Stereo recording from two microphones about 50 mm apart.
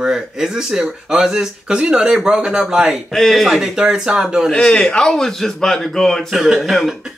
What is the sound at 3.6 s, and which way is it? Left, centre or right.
Speech, centre.